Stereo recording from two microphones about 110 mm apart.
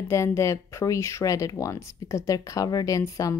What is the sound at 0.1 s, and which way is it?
A woman's voice, 25° left (ahead or behind).